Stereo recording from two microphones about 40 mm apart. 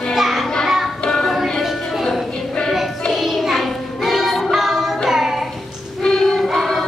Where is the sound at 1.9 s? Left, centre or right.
Centre.